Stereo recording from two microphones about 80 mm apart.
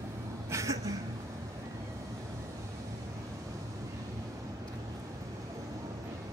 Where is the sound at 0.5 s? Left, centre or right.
Right.